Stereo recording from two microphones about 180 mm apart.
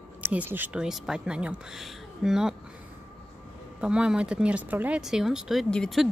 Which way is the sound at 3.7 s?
5° right (ahead or behind).